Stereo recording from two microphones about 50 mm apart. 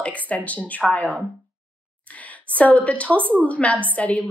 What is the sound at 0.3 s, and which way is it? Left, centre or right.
Speech, left.